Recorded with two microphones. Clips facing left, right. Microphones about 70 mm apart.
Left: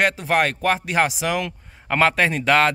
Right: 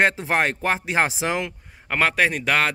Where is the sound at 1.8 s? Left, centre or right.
Centre.